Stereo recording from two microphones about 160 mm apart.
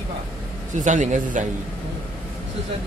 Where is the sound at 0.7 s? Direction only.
50° right (ahead or behind).